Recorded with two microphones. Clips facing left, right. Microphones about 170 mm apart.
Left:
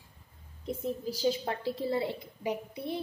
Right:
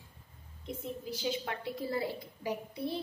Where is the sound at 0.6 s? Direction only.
35° left (ahead or behind); by 3.0 s 20° left (ahead or behind).